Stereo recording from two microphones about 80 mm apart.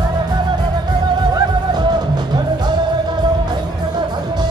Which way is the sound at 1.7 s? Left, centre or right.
Right.